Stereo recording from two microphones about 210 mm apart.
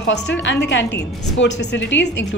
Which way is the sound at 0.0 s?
55° left (ahead or behind).